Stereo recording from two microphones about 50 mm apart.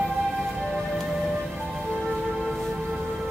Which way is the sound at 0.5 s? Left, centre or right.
Centre.